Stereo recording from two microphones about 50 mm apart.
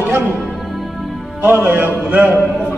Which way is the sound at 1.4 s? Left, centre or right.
Right.